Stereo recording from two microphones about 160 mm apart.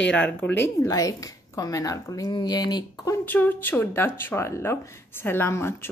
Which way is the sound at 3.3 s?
10° left (ahead or behind).